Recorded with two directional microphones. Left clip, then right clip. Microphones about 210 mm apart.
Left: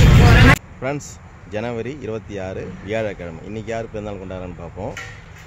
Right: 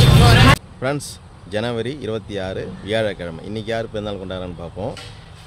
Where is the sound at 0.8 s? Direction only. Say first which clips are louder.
Right 2 dB; 20° right (ahead or behind).